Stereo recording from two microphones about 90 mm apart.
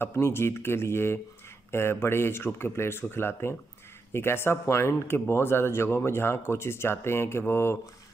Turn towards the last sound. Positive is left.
turn(degrees=30)  # may be behind; listen again after turning